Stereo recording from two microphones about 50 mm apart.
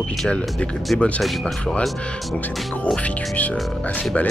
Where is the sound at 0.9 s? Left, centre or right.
Centre.